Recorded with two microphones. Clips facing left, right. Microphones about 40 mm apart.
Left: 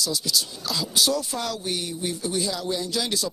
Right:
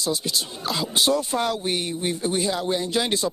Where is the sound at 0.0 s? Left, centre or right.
Right.